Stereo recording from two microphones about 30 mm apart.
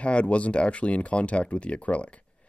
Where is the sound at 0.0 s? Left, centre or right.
Left.